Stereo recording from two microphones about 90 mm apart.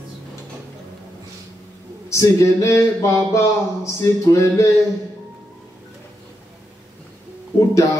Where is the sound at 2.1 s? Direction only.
35° left (ahead or behind).